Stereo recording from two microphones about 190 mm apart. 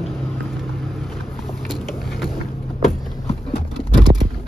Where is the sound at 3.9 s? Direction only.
20° right (ahead or behind).